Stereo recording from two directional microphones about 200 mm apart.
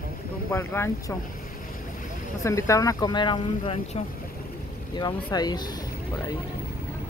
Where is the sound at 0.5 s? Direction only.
15° left (ahead or behind).